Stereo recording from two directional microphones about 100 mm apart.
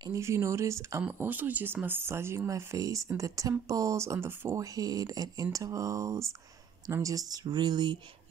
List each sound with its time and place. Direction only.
0.1 s speech: 30° right (ahead or behind)
1.1 s speech: 20° right (ahead or behind)
4.7 s speech: 40° right (ahead or behind)